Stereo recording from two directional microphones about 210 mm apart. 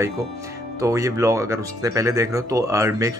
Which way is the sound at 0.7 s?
15° right (ahead or behind).